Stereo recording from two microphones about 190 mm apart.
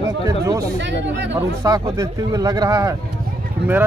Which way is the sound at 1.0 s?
70° right (ahead or behind).